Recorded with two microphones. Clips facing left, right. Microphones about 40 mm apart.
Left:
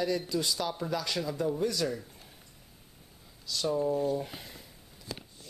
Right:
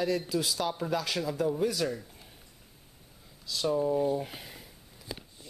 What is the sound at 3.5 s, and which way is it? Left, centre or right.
Speech, centre.